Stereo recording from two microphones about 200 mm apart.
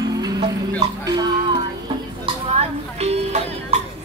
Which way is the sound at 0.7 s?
20° right (ahead or behind).